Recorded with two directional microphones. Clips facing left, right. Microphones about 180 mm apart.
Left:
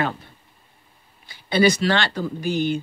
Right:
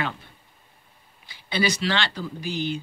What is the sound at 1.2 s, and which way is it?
Speech, 45° left (ahead or behind).